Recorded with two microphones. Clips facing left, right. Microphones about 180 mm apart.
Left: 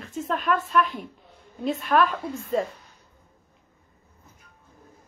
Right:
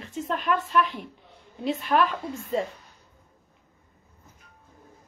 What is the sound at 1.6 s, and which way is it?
Speech, 50° left (ahead or behind).